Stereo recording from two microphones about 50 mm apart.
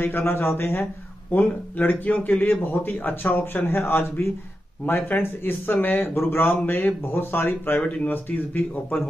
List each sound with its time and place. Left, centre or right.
0.0 s speech: left
1.3 s speech: left
4.8 s speech: left